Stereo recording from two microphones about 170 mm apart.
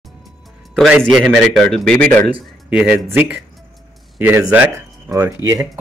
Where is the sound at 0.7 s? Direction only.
5° right (ahead or behind).